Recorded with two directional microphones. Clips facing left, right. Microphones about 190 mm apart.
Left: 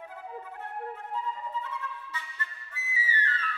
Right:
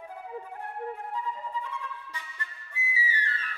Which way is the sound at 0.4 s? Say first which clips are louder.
Right 1 dB; 15° right (ahead or behind).